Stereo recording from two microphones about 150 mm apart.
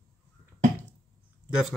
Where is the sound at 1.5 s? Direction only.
5° right (ahead or behind).